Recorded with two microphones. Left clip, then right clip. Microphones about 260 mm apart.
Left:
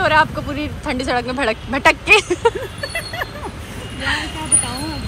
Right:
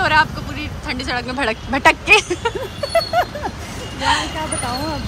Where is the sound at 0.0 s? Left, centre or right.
Centre.